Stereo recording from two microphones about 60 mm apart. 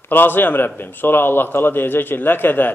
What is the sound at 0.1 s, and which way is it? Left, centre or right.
A man's voice, left.